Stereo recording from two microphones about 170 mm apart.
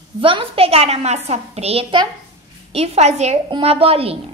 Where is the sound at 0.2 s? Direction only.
30° right (ahead or behind).